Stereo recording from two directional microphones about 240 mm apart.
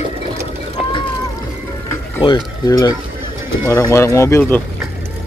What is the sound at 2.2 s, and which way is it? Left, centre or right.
Speech, centre.